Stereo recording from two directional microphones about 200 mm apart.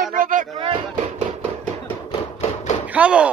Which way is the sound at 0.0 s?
45° right (ahead or behind).